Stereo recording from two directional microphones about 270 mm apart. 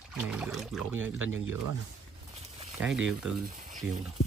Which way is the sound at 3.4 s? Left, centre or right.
Right.